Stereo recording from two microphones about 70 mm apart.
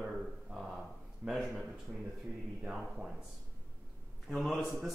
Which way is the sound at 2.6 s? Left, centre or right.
Centre.